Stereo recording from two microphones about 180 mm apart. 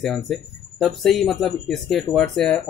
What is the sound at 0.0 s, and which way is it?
Speech, centre (ahead or behind).